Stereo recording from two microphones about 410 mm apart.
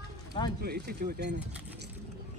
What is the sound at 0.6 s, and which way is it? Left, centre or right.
Speech, right.